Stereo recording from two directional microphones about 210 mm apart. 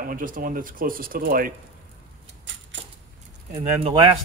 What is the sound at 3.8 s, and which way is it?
Speech, 25° right (ahead or behind).